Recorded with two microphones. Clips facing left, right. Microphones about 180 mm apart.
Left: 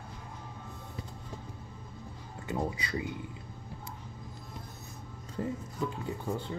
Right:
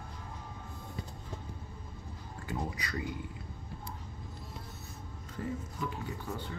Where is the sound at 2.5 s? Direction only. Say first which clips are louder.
Left 4 dB; 25° left (ahead or behind).